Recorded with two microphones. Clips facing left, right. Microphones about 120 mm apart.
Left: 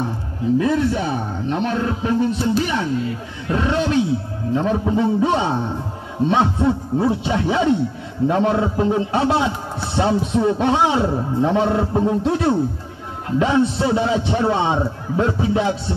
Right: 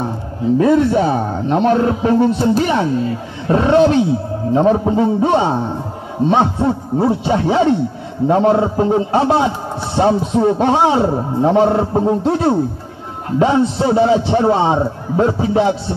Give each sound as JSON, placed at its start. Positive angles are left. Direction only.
{"t": 0.6, "sound": "a man's voice", "side_deg": -45}